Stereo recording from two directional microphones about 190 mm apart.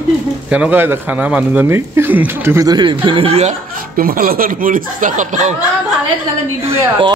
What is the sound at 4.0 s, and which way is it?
Speech, 50° right (ahead or behind).